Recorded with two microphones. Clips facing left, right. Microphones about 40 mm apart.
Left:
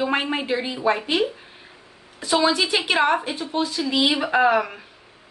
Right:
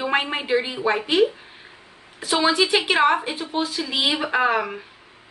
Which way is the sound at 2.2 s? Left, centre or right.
Centre.